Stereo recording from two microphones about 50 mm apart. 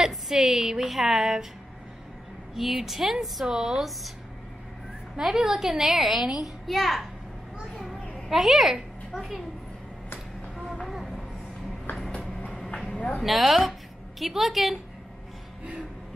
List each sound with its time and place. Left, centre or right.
0.3 s a woman's voice: centre
2.5 s speech: centre
5.2 s speech: centre
8.2 s a woman's voice: centre
10.6 s vehicle: centre
12.5 s a sound: centre
12.9 s a sound: left
13.2 s speech: centre